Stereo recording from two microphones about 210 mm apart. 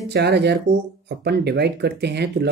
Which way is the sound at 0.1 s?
50° right (ahead or behind).